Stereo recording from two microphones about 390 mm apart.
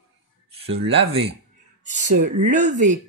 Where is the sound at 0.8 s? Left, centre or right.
Centre.